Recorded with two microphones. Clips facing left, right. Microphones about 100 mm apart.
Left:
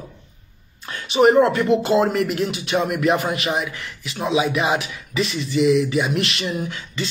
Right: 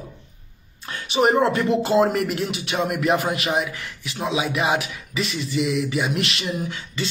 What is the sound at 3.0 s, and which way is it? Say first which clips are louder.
Speech: left 1 dB; 35° right (ahead or behind).